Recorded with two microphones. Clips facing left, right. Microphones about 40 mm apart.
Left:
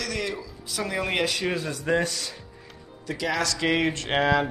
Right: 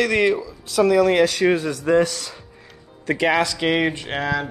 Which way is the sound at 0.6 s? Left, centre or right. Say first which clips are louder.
Right 13 dB; right.